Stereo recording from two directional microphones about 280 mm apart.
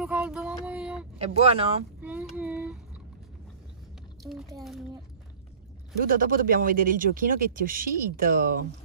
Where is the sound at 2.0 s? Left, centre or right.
Centre.